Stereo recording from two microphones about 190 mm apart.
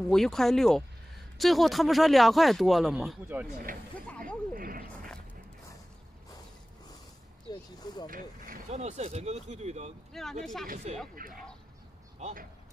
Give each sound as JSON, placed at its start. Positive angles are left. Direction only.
{"t": 0.1, "sound": "speech", "side_deg": 0}
{"t": 3.7, "sound": "speech", "side_deg": -45}
{"t": 4.6, "sound": "a sound", "side_deg": -50}
{"t": 7.4, "sound": "a sound", "side_deg": 20}
{"t": 8.1, "sound": "speech", "side_deg": -45}
{"t": 10.4, "sound": "speech", "side_deg": 0}
{"t": 10.7, "sound": "speech", "side_deg": -35}